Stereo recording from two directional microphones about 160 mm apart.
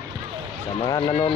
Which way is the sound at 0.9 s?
25° left (ahead or behind).